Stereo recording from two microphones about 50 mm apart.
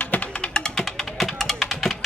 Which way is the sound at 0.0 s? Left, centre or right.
Left.